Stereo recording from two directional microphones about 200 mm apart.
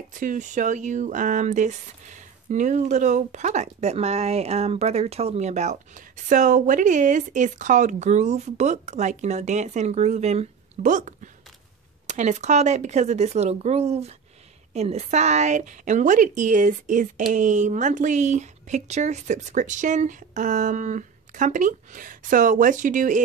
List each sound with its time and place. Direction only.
0.1 s speech: 40° right (ahead or behind)